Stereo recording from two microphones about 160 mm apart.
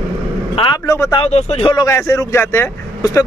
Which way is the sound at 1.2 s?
40° left (ahead or behind).